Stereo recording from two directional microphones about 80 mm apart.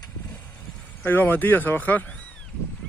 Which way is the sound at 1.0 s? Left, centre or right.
Left.